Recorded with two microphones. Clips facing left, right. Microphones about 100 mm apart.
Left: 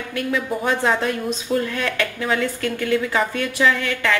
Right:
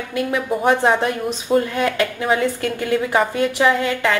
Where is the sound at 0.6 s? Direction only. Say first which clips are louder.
Right 6 dB; 15° right (ahead or behind).